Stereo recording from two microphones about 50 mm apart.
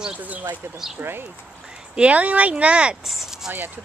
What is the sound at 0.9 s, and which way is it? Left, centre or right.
Speech, right.